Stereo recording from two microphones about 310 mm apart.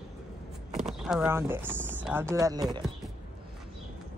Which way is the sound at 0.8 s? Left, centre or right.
Centre.